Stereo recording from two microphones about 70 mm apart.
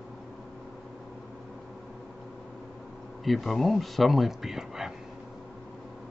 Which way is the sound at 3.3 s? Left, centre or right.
Centre.